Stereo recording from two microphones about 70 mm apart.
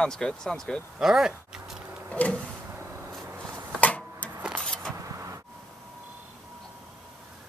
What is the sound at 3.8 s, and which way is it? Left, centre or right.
Tick-tock, centre.